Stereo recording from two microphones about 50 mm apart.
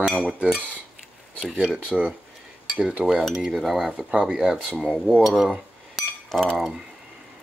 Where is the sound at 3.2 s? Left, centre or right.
Centre.